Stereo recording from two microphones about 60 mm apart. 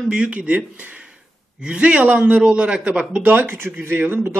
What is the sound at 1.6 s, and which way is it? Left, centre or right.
Speech, centre.